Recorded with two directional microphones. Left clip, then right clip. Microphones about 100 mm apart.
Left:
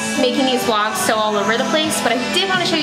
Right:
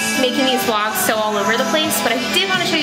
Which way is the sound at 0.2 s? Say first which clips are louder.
Left 2 dB; 10° left (ahead or behind).